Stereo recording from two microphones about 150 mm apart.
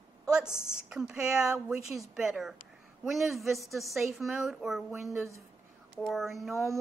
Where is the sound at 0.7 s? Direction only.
5° right (ahead or behind).